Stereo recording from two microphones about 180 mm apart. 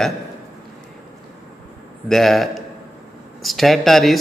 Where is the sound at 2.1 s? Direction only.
Centre (ahead or behind).